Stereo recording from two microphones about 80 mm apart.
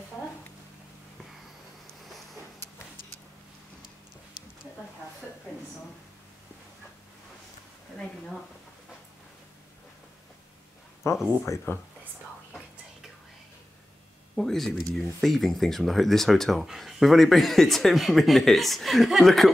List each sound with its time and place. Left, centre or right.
11.0 s speech: left
14.3 s speech: centre